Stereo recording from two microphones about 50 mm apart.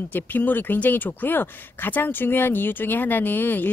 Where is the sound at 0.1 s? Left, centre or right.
Left.